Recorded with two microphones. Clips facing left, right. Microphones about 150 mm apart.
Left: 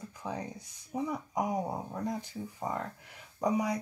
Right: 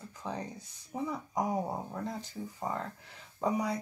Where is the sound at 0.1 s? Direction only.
10° left (ahead or behind).